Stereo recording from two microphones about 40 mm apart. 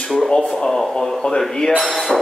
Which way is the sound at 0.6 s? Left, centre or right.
Centre.